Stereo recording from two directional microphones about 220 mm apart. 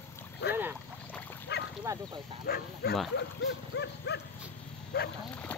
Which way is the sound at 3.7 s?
50° left (ahead or behind).